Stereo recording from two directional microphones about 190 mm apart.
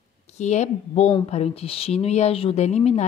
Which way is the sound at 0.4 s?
35° left (ahead or behind).